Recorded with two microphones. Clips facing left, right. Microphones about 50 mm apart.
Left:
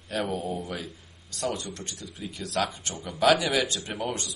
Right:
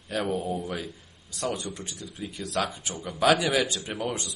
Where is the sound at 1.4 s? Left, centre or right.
Centre.